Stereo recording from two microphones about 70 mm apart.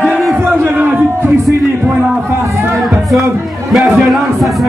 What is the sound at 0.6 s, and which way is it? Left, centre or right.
Speech, right.